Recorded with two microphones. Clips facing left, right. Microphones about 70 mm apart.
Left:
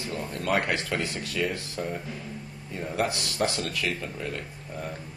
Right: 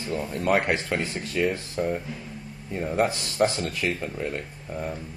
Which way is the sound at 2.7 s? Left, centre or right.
Right.